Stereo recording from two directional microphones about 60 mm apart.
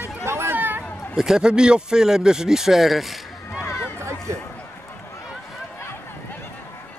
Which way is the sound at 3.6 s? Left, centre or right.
Left.